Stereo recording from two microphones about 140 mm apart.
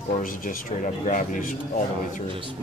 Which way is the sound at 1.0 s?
65° left (ahead or behind).